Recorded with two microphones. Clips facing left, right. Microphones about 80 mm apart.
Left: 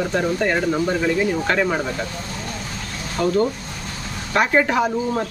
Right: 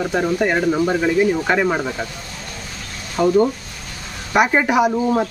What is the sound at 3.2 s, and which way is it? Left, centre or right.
Speech, centre.